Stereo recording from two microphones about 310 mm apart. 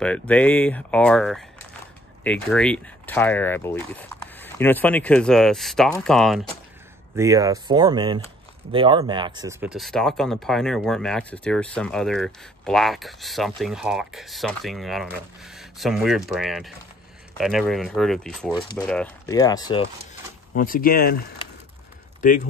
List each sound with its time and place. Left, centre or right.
0.0 s speech: centre
7.2 s speech: centre
20.5 s speech: left
22.2 s speech: left